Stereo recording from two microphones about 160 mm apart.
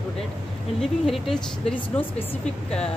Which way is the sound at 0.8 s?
Centre (ahead or behind).